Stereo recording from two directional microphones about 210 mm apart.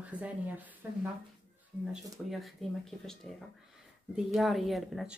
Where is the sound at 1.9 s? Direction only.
Centre (ahead or behind).